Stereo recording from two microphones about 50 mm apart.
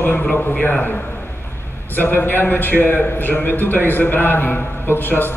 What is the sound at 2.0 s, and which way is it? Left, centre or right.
A man's voice, left.